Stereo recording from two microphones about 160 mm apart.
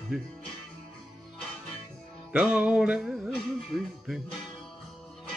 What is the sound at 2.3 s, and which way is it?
Music, 5° right (ahead or behind).